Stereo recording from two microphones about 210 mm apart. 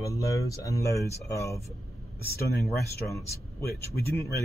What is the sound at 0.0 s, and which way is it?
Speech, 15° left (ahead or behind).